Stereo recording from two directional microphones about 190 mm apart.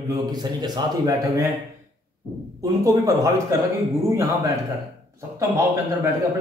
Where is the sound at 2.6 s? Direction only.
20° right (ahead or behind).